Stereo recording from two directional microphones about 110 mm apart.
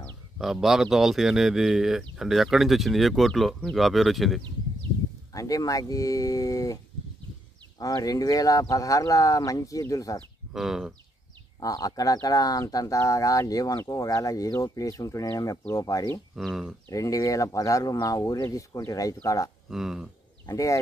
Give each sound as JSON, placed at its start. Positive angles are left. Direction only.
{"t": 0.4, "sound": "speech", "side_deg": -5}
{"t": 5.3, "sound": "speech", "side_deg": 30}
{"t": 7.8, "sound": "speech", "side_deg": 35}
{"t": 10.5, "sound": "speech", "side_deg": -5}
{"t": 11.6, "sound": "speech", "side_deg": 35}
{"t": 16.3, "sound": "speech", "side_deg": 0}
{"t": 16.9, "sound": "speech", "side_deg": 30}
{"t": 19.7, "sound": "speech", "side_deg": -5}
{"t": 20.4, "sound": "speech", "side_deg": 30}